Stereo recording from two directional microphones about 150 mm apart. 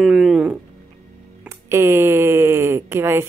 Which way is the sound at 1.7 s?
20° right (ahead or behind).